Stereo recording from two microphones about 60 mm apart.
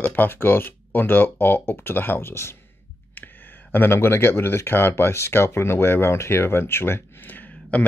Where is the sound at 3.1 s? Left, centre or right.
Left.